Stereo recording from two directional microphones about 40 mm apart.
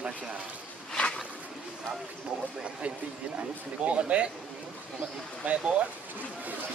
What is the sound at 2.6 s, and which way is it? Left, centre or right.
Speech, right.